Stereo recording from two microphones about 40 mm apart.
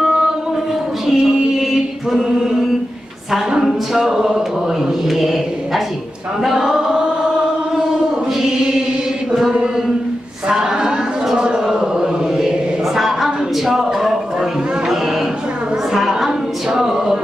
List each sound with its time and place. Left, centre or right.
1.1 s mantra: centre
3.6 s a man's voice: centre
4.1 s speech: centre
5.0 s a man's voice: centre
6.4 s chant: centre
10.5 s a sound: centre
11.2 s chant: centre
12.9 s a sound: centre
16.0 s a sound: centre
16.3 s a capella: centre